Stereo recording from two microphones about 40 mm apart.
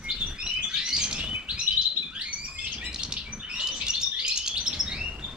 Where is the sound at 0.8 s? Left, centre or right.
Centre.